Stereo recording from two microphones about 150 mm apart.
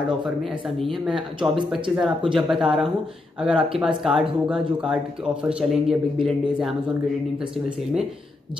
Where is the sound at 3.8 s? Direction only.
5° right (ahead or behind).